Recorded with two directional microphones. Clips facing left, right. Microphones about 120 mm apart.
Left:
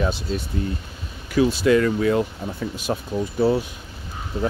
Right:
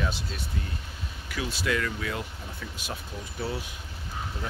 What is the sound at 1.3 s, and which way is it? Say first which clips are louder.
Speech: left 13 dB; 35° left (ahead or behind).